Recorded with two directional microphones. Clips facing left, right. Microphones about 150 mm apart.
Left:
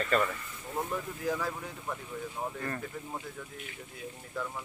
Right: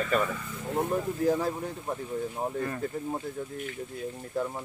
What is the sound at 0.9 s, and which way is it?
Speech, 35° right (ahead or behind).